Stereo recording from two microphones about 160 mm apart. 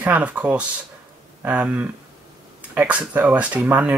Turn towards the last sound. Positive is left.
turn(degrees=-10)  # may be behind; listen again after turning